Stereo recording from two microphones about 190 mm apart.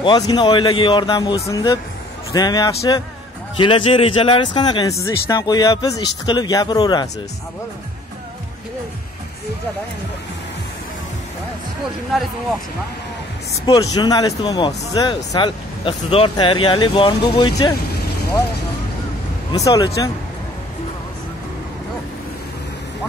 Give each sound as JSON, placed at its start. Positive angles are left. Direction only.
{"t": 0.0, "sound": "speech", "side_deg": 25}
{"t": 13.5, "sound": "speech", "side_deg": 20}
{"t": 19.5, "sound": "speech", "side_deg": 20}